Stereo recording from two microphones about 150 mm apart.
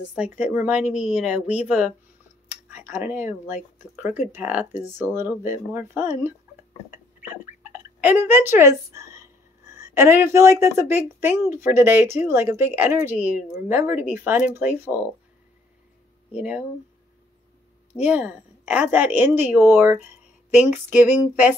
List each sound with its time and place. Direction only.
0.1 s speech: 10° right (ahead or behind)
6.9 s a sound: 15° right (ahead or behind)
11.1 s speech: 15° right (ahead or behind)
16.3 s speech: 10° right (ahead or behind)
17.9 s speech: 10° right (ahead or behind)